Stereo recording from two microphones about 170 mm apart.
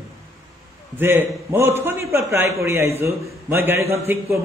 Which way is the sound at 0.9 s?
10° right (ahead or behind).